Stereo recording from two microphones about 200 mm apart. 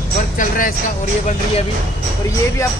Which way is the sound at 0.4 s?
45° left (ahead or behind).